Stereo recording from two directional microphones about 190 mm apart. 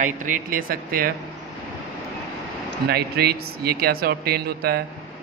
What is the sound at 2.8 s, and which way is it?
Speech, 55° right (ahead or behind).